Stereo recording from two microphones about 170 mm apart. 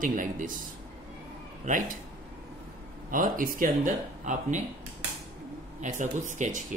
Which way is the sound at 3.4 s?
55° right (ahead or behind).